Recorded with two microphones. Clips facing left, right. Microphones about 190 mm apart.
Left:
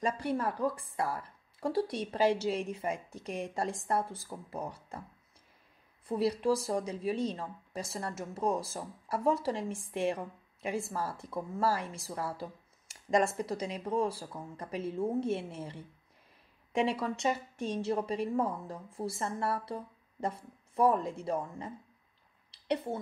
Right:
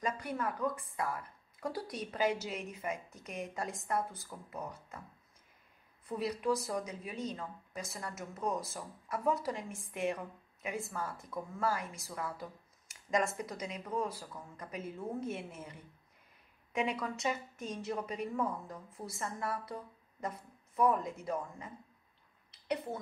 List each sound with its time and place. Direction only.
0.0 s speech: 30° left (ahead or behind)
6.0 s speech: 30° left (ahead or behind)
22.5 s a sound: 30° left (ahead or behind)